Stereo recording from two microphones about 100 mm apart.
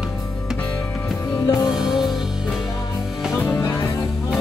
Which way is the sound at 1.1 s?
5° right (ahead or behind).